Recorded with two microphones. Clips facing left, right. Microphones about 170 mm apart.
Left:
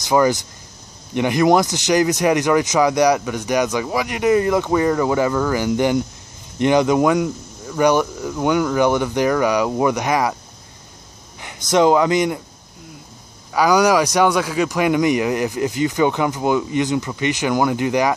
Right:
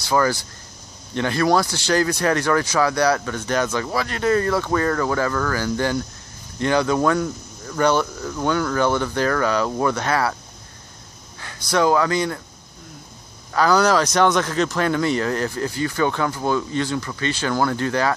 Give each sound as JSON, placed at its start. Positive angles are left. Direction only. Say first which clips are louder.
{"t": 0.0, "sound": "speech", "louder": "left 4 dB", "side_deg": 20}
{"t": 11.3, "sound": "speech", "louder": "left 4 dB", "side_deg": 20}
{"t": 13.5, "sound": "speech", "louder": "left 2 dB", "side_deg": 10}